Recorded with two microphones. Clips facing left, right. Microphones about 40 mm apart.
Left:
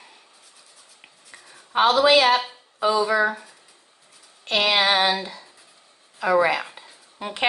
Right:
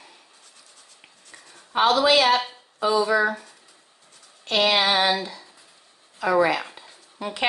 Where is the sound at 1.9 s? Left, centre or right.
Centre.